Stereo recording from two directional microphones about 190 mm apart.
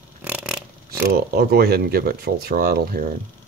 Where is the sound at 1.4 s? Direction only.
55° right (ahead or behind).